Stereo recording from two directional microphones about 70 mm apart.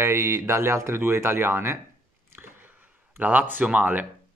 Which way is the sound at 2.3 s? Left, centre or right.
Right.